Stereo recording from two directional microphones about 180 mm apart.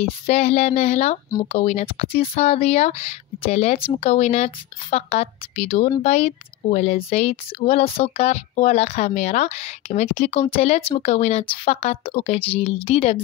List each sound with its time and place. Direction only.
0.0 s a woman's voice: 35° left (ahead or behind)